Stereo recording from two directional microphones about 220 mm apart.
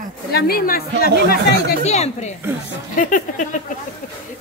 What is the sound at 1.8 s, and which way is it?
Speech, 30° left (ahead or behind).